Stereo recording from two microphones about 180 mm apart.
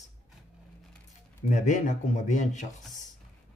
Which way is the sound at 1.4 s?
40° left (ahead or behind).